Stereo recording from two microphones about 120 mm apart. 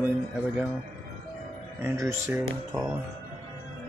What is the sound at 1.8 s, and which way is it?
Speech, 20° right (ahead or behind).